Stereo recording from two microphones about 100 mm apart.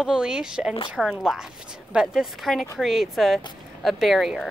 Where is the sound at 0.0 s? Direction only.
10° right (ahead or behind).